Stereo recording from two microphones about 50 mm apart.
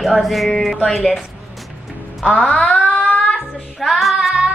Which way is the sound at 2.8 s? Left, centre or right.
Left.